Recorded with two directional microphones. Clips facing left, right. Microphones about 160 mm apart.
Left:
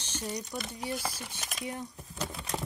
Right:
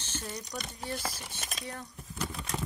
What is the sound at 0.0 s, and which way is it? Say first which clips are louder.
Crumpling: left 3 dB; 15° left (ahead or behind).